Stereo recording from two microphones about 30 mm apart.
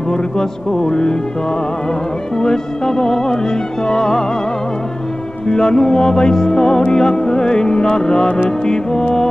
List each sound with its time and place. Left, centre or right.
0.1 s music: left
2.3 s music: left
5.5 s music: left